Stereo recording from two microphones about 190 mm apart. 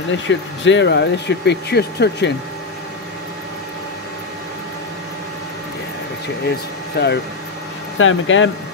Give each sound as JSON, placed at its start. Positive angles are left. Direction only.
{"t": 0.3, "sound": "speech", "side_deg": 70}
{"t": 7.0, "sound": "speech", "side_deg": 60}
{"t": 8.0, "sound": "speech", "side_deg": 90}